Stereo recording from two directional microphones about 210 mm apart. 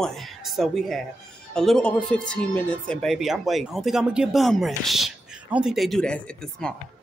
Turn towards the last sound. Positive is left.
turn(degrees=5)  # may be behind; listen again after turning